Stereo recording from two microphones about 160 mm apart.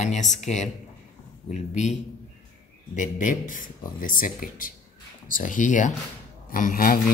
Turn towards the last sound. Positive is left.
turn(degrees=60)  # may be behind; listen again after turning